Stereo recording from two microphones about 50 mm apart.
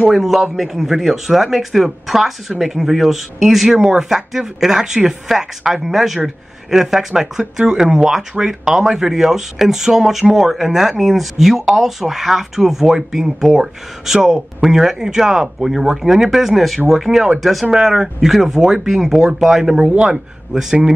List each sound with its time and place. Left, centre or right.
0.1 s speech: centre
19.8 s speech: right